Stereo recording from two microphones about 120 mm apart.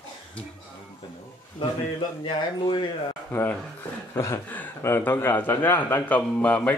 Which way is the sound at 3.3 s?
20° left (ahead or behind).